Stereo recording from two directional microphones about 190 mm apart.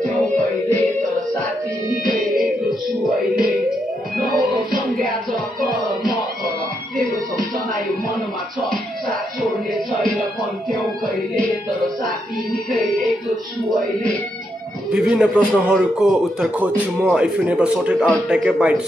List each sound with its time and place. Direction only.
1.9 s music: 45° right (ahead or behind)
4.2 s music: 50° right (ahead or behind)
14.9 s a man's voice: 5° right (ahead or behind)